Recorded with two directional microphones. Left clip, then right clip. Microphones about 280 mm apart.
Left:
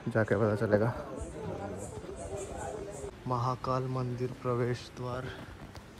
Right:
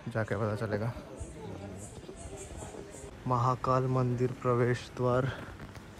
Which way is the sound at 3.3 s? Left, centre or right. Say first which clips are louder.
Right 4 dB; centre.